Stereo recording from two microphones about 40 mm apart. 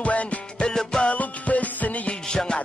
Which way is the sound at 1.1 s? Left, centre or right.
Left.